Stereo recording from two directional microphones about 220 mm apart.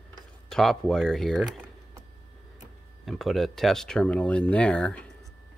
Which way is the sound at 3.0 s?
Centre (ahead or behind).